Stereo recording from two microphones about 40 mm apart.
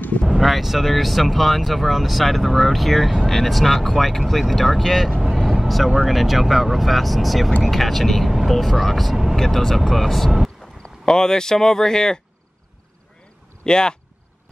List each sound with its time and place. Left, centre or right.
0.2 s speech: centre
5.3 s vehicle: centre
5.9 s speech: centre
10.8 s speech: centre
13.7 s speech: centre